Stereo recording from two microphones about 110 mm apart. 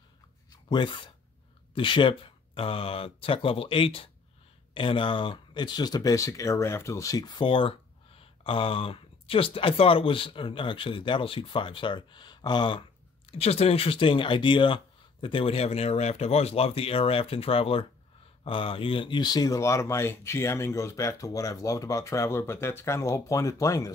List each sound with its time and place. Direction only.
0.5 s a sound: 45° left (ahead or behind)
1.8 s speech: 50° left (ahead or behind)
13.3 s speech: 65° left (ahead or behind); by 23.9 s 30° left (ahead or behind)